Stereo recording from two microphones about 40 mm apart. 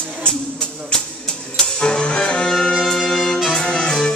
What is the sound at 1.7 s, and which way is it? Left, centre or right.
Music, left.